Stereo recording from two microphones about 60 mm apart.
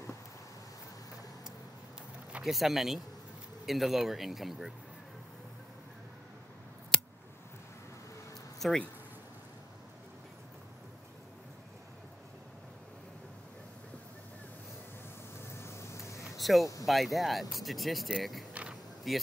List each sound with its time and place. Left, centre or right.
2.4 s speech: centre
8.5 s speech: centre
15.5 s vehicle: left
16.3 s a sound: centre
16.8 s speech: centre
18.5 s a sound: centre
19.1 s speech: centre